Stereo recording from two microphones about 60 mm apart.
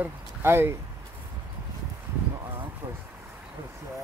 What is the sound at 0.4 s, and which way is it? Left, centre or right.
Speech, right.